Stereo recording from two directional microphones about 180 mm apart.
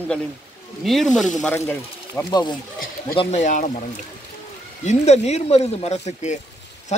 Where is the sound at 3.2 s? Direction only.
40° left (ahead or behind).